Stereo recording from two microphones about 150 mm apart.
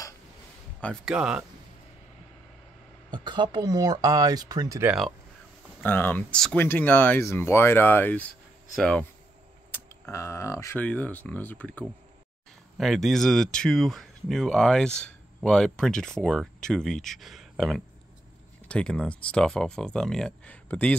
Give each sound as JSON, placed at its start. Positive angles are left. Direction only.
{"t": 1.0, "sound": "speech", "side_deg": -5}
{"t": 3.1, "sound": "speech", "side_deg": -30}
{"t": 5.8, "sound": "speech", "side_deg": 15}
{"t": 10.1, "sound": "speech", "side_deg": 20}
{"t": 12.7, "sound": "speech", "side_deg": 0}